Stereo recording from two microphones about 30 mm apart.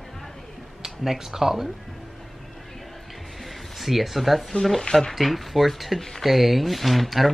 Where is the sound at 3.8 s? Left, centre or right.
Centre.